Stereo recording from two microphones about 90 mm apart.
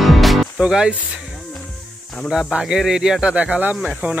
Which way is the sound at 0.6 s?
10° right (ahead or behind).